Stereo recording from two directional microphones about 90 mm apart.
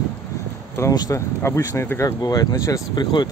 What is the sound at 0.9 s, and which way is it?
Speech, 45° left (ahead or behind).